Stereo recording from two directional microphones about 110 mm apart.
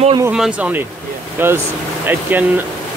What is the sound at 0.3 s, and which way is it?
Speech, 10° right (ahead or behind).